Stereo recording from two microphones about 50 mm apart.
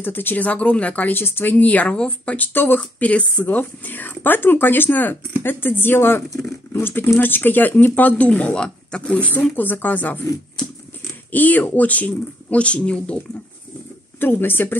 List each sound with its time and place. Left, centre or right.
0.0 s speech: left
1.1 s speech: left
2.3 s speech: left
9.6 s speech: left
11.3 s speech: left
14.2 s speech: left